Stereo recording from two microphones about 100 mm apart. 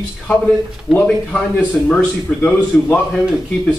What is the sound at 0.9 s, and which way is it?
A man's voice, 10° left (ahead or behind).